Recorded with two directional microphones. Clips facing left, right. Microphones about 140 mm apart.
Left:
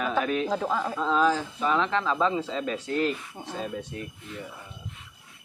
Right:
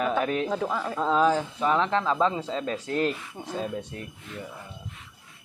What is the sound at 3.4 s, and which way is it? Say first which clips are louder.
Speech: right 1 dB; 5° left (ahead or behind).